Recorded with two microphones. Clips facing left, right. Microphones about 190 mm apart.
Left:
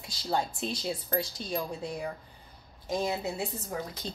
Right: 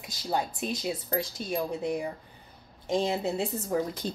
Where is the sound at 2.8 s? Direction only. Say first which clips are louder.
Right 3 dB; 25° right (ahead or behind).